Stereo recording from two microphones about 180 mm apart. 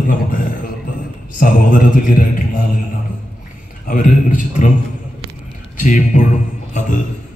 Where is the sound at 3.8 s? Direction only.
45° left (ahead or behind).